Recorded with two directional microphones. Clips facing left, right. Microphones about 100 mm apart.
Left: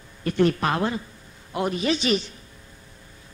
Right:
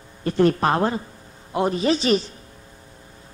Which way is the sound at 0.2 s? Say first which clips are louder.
Right 3 dB; 35° right (ahead or behind).